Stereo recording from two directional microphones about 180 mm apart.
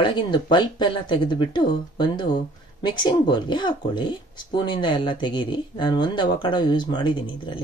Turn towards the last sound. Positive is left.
turn(degrees=25)  # may be behind; listen again after turning